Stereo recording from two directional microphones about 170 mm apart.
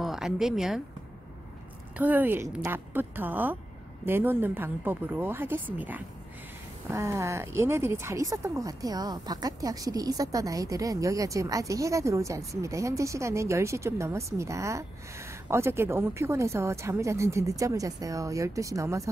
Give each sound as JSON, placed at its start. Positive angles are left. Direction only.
{"t": 0.0, "sound": "speech", "side_deg": 0}
{"t": 2.0, "sound": "speech", "side_deg": -10}